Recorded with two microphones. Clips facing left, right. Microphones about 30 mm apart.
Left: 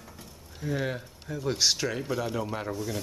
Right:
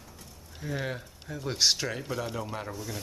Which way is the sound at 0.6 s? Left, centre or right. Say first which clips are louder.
Left 3 dB; centre.